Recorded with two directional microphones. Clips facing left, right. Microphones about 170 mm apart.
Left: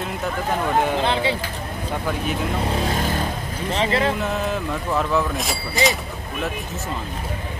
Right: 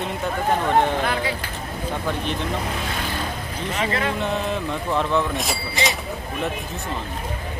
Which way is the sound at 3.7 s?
30° left (ahead or behind).